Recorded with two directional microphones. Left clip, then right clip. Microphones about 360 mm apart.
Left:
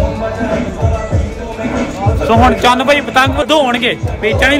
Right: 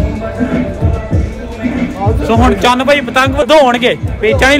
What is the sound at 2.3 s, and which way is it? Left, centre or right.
A man's voice, centre.